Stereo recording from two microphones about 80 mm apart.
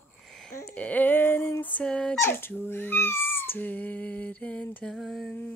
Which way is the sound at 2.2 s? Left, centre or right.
Left.